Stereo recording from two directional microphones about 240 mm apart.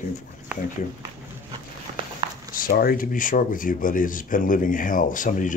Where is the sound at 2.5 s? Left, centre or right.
Left.